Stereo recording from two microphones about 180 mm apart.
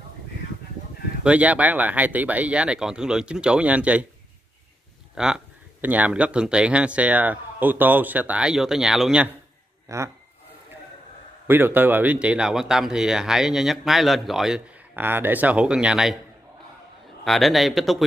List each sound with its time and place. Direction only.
1.2 s speech: 5° right (ahead or behind)
5.1 s speech: 5° right (ahead or behind)
9.8 s speech: 15° right (ahead or behind)
11.4 s speech: 10° right (ahead or behind)
17.2 s speech: centre (ahead or behind)